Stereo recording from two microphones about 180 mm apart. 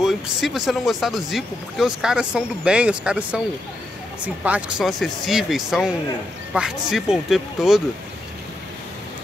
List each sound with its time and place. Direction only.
0.0 s speech: centre (ahead or behind)